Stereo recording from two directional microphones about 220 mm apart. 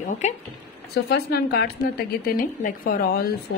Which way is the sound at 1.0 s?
45° left (ahead or behind).